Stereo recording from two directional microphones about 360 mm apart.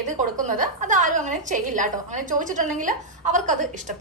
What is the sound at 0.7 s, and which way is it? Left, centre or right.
A woman's voice, right.